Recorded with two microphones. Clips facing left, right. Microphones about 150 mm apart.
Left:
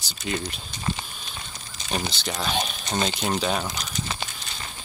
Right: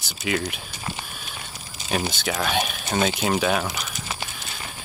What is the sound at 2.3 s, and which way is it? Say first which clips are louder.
Speech: right 2 dB; 60° right (ahead or behind).